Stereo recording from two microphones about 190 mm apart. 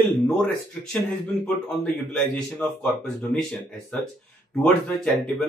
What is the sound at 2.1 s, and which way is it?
Speech, 5° left (ahead or behind).